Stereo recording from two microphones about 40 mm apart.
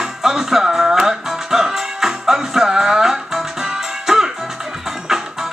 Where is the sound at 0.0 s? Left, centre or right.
Centre.